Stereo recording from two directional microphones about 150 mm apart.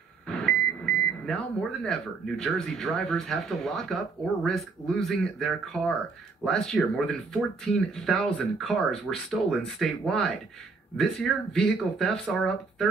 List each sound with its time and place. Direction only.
1.2 s speech: 5° left (ahead or behind)